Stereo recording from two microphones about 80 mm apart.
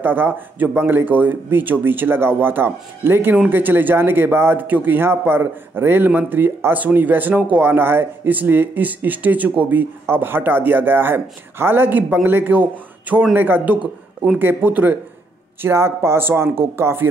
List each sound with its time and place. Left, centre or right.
0.0 s a man's voice: right
15.6 s speech: right